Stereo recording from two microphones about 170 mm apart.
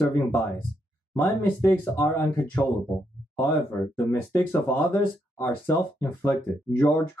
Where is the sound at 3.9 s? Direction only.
15° left (ahead or behind).